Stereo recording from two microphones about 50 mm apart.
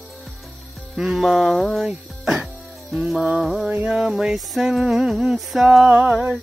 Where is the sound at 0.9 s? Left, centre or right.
Centre.